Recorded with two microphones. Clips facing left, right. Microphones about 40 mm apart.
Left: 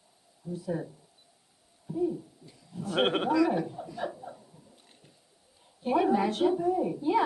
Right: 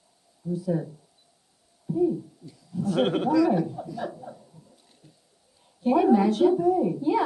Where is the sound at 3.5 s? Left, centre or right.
Centre.